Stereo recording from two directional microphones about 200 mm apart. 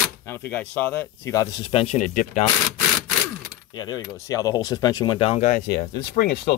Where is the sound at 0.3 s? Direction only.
10° left (ahead or behind).